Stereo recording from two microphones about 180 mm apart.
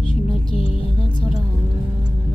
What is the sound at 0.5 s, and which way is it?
Music, 30° left (ahead or behind).